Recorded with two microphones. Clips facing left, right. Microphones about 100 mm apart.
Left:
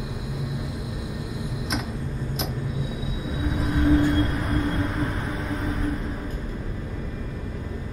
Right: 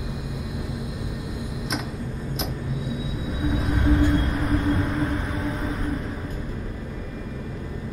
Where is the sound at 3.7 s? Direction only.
Centre (ahead or behind).